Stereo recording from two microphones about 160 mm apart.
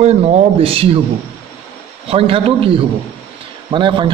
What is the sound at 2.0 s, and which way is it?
A man's voice, 35° right (ahead or behind).